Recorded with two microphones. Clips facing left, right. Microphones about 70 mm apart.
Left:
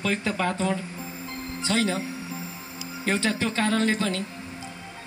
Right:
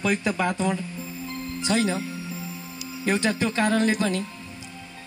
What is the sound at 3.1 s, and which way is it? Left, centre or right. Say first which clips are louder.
Speech: right 2 dB; centre.